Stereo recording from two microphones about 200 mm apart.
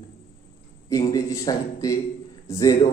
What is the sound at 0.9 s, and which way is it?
A man's voice, 15° left (ahead or behind).